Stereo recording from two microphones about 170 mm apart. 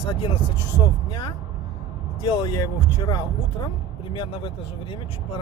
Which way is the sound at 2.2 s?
25° left (ahead or behind).